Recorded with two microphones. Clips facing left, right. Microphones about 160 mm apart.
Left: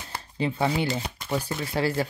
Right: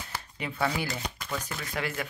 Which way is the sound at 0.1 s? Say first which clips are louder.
Left 10 dB; 30° left (ahead or behind).